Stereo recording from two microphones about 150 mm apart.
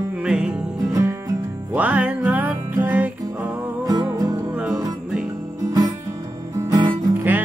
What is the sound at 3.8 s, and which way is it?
Music, 25° right (ahead or behind).